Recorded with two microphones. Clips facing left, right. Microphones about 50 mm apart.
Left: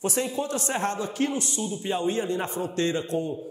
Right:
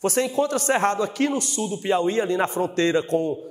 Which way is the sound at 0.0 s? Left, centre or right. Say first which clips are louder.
Right 6 dB; right.